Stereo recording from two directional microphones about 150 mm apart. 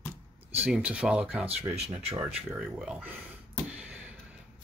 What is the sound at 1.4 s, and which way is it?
Speech, 45° right (ahead or behind).